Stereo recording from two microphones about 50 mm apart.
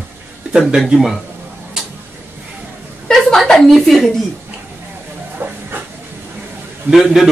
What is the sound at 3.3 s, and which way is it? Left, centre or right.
Speech, centre.